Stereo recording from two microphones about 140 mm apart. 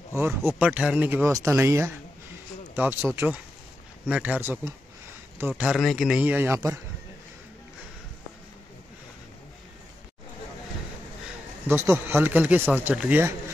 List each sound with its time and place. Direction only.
0.1 s speech: 15° right (ahead or behind)
5.6 s speech: centre (ahead or behind); by 6.8 s 20° right (ahead or behind)
11.6 s speech: 20° right (ahead or behind)